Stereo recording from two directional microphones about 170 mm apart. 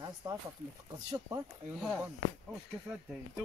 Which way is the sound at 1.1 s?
20° right (ahead or behind).